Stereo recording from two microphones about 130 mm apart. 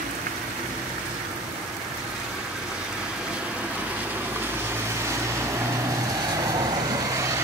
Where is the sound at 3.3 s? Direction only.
10° right (ahead or behind).